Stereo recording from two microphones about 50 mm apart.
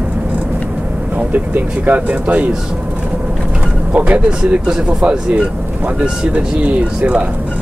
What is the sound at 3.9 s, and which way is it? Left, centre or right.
Speech, right.